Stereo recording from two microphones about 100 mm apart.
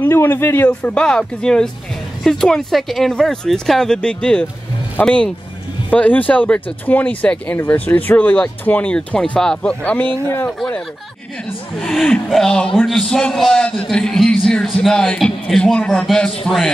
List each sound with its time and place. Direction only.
0.0 s speech: 20° left (ahead or behind)
11.8 s speech: 5° left (ahead or behind)